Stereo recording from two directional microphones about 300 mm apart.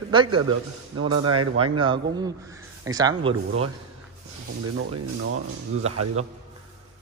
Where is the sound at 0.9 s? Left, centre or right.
Right.